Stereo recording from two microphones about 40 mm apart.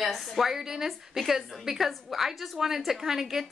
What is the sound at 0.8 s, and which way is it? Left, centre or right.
A woman's voice, centre.